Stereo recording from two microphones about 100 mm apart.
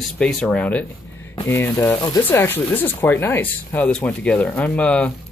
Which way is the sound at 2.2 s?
20° left (ahead or behind).